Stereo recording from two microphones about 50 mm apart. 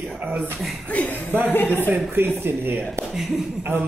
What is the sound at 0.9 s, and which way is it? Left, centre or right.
Speech, left.